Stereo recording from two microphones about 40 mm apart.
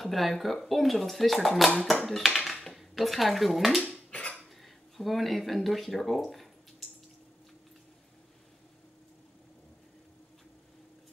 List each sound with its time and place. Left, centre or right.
0.0 s speech: centre
4.1 s dishes: left
4.6 s speech: centre